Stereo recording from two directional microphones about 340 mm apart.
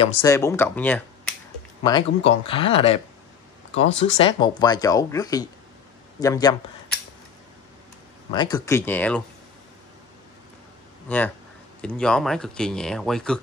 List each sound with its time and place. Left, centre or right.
0.0 s speech: centre
4.0 s speech: centre
8.3 s speech: centre
11.1 s speech: centre